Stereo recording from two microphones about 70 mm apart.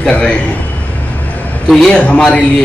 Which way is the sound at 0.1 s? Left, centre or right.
Centre.